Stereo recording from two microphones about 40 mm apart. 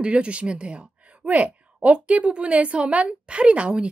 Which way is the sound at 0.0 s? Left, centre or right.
Right.